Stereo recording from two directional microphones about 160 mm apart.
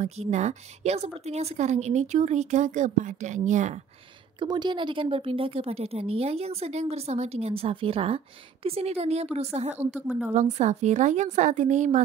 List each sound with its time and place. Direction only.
0.0 s speech: 45° right (ahead or behind)
4.4 s speech: 25° right (ahead or behind); by 9.8 s 45° right (ahead or behind)
9.9 s a woman's voice: 5° right (ahead or behind)
10.3 s speech: 45° right (ahead or behind)